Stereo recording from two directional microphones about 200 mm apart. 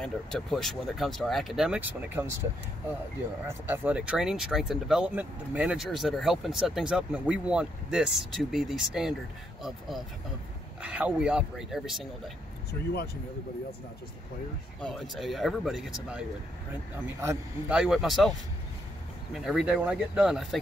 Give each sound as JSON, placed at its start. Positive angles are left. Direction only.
{"t": 0.0, "sound": "speech", "side_deg": 0}
{"t": 3.4, "sound": "speech", "side_deg": -10}
{"t": 12.9, "sound": "speech", "side_deg": 50}
{"t": 14.8, "sound": "speech", "side_deg": 0}
{"t": 19.3, "sound": "speech", "side_deg": 0}